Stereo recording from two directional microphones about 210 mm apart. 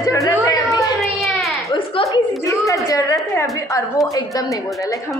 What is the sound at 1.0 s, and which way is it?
Baby cry, centre (ahead or behind).